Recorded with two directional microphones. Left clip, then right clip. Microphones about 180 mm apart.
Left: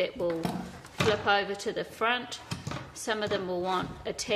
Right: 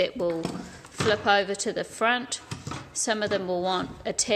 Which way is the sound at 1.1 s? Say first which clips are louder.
Right 6 dB; 30° right (ahead or behind).